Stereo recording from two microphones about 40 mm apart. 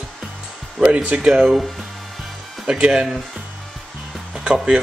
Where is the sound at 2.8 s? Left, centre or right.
Right.